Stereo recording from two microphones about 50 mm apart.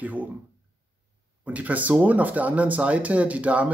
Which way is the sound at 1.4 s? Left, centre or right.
Right.